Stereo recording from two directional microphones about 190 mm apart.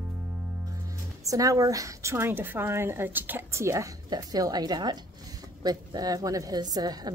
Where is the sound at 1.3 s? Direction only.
20° right (ahead or behind).